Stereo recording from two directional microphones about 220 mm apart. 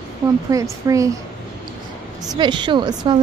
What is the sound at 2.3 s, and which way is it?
Speech, 20° right (ahead or behind).